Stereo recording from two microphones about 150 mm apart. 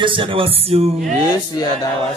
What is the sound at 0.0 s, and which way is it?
Speech, 35° right (ahead or behind).